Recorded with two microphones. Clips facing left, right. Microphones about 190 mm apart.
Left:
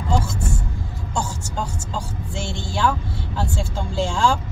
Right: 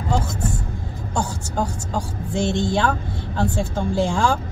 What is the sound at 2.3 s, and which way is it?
Speech, 20° right (ahead or behind).